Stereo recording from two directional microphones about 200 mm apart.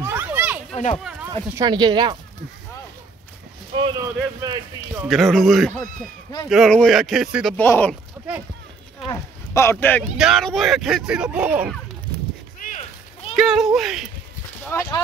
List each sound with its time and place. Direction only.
0.0 s a sound: 10° right (ahead or behind)
1.5 s speech: 20° right (ahead or behind)
3.7 s speech: 20° right (ahead or behind)
5.0 s speech: centre (ahead or behind)
9.1 s speech: 15° left (ahead or behind)
10.1 s speech: centre (ahead or behind)
13.4 s speech: centre (ahead or behind)
14.6 s speech: 10° left (ahead or behind)